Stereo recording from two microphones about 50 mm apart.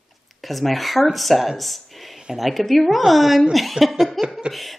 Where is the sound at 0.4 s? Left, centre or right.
Centre.